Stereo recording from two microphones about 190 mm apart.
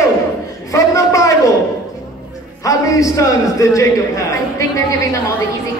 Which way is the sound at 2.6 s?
15° left (ahead or behind).